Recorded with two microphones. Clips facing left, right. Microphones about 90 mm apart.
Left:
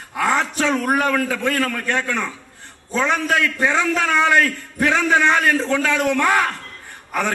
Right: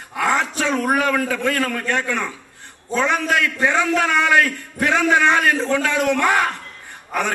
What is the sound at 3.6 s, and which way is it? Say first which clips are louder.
A man's voice: right 1 dB; 15° right (ahead or behind).